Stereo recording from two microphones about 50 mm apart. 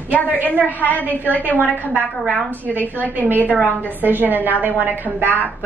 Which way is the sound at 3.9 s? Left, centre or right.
Right.